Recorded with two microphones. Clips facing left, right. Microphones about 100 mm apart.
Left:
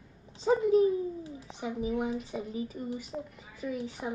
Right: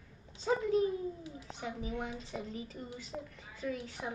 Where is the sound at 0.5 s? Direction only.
15° left (ahead or behind).